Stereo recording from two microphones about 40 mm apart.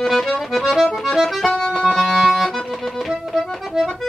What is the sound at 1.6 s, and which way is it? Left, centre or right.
Accordion, centre.